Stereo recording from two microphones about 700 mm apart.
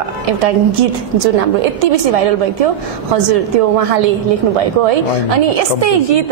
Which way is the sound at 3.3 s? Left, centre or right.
Right.